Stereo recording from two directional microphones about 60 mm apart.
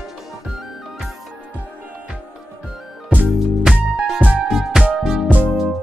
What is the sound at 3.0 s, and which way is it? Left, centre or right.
Music, centre.